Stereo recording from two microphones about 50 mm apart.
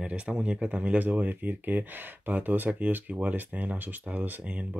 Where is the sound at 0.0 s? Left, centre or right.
Right.